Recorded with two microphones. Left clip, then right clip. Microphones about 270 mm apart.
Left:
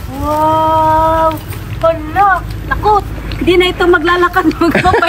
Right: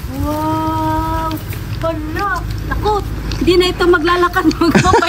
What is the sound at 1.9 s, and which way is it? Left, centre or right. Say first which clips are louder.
A woman's voice: left 9 dB; centre.